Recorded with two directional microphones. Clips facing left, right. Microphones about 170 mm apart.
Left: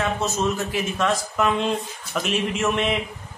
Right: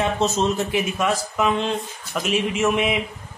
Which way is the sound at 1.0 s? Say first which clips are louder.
Left 2 dB; 5° right (ahead or behind).